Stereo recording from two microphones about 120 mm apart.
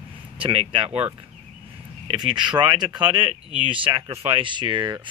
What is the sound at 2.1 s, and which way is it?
Speech, 45° right (ahead or behind).